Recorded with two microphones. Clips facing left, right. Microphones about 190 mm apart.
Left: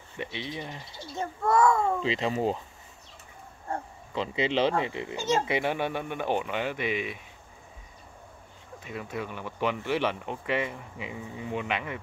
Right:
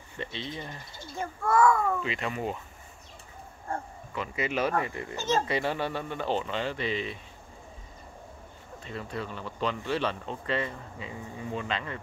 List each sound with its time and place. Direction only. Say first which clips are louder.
0.2 s a child's voice: left 1 dB; 15° left (ahead or behind)
3.7 s speech: left 2 dB; 25° left (ahead or behind)
8.8 s speech: left 1 dB; 10° left (ahead or behind)